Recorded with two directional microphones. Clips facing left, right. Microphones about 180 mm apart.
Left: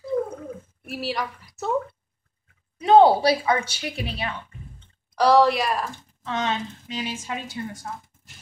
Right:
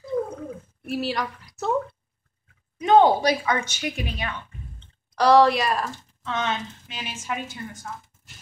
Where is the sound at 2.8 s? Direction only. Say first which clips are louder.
Left 2 dB; 30° left (ahead or behind).